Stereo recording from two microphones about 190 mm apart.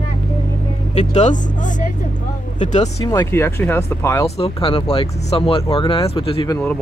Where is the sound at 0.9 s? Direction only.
35° left (ahead or behind).